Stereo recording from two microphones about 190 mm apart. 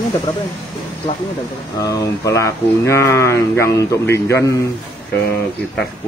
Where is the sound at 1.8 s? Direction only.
15° left (ahead or behind).